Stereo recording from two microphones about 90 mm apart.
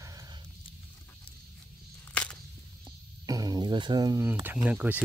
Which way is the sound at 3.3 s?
45° right (ahead or behind).